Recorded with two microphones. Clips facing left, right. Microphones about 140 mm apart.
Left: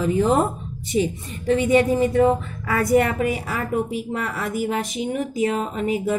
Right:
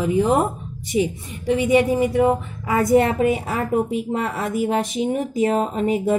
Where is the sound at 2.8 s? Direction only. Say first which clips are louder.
Right 2 dB; 25° right (ahead or behind).